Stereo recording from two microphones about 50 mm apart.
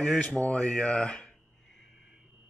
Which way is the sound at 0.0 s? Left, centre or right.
Left.